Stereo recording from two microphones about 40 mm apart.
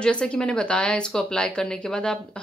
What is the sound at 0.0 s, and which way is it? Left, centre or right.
Speech, left.